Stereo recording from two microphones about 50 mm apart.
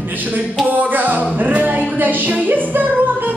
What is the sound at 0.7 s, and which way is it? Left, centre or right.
Music, right.